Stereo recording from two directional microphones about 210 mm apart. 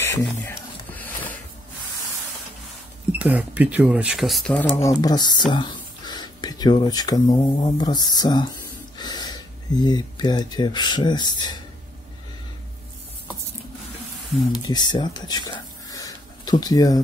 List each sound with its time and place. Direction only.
0.0 s a sound: 10° left (ahead or behind)
3.2 s speech: 5° right (ahead or behind)
5.0 s speech: 20° left (ahead or behind)
14.5 s speech: 20° left (ahead or behind)